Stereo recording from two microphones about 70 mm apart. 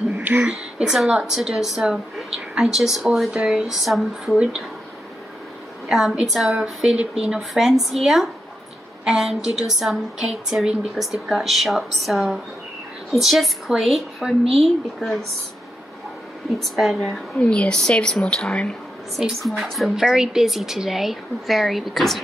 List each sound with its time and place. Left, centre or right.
0.1 s a sound: right
0.5 s a woman's voice: centre
5.9 s a woman's voice: centre
16.5 s speech: centre
17.4 s a woman's voice: centre
19.1 s speech: centre